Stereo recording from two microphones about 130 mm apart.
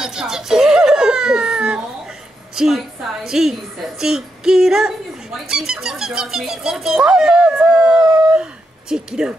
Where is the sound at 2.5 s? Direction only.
5° right (ahead or behind).